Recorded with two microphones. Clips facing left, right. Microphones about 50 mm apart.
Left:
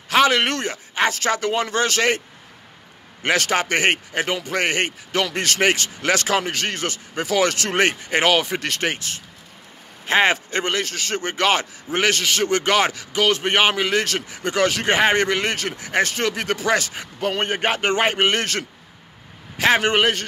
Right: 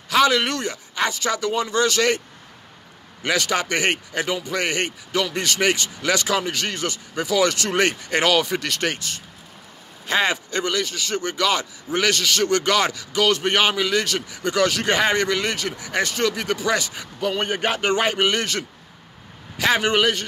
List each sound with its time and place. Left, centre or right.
0.1 s a man's voice: left